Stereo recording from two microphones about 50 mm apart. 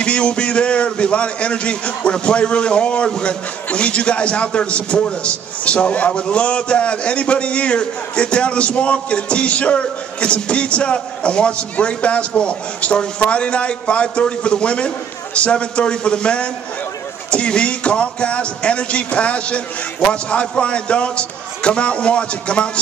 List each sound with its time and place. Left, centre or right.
0.0 s a man's voice: left